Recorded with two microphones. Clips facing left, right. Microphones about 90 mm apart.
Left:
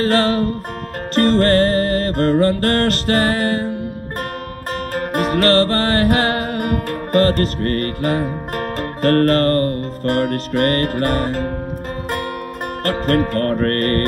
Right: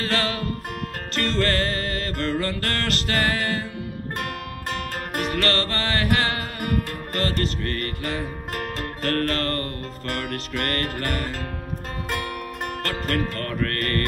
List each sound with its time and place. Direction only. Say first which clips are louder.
0.0 s music: left 10 dB; 40° left (ahead or behind)
4.9 s music: left 10 dB; 40° left (ahead or behind)
12.8 s music: left 10 dB; 40° left (ahead or behind)